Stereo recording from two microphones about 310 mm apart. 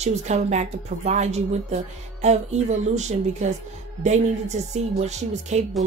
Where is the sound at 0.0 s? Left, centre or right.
Right.